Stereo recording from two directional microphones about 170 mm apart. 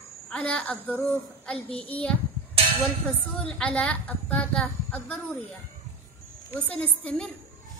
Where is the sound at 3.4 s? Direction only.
5° left (ahead or behind).